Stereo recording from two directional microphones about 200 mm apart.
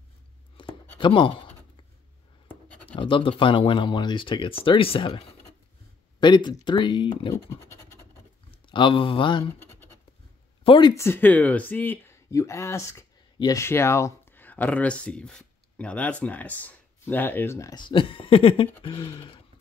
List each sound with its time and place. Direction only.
0.6 s a sound: 25° left (ahead or behind)
0.9 s speech: 25° left (ahead or behind)
2.4 s writing: 5° left (ahead or behind)
3.0 s speech: 25° left (ahead or behind)
7.4 s scratch: 15° left (ahead or behind)
8.5 s speech: 25° left (ahead or behind)
10.6 s speech: 25° left (ahead or behind)
11.0 s speech: 10° left (ahead or behind)